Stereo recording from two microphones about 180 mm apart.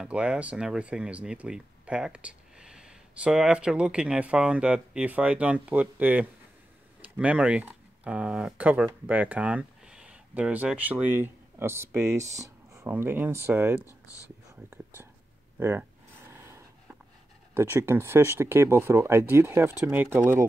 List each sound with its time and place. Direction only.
0.0 s speech: 5° right (ahead or behind)
13.8 s speech: 20° left (ahead or behind)
15.6 s speech: 10° right (ahead or behind)
16.3 s a sound: 15° right (ahead or behind)
17.6 s speech: 15° right (ahead or behind)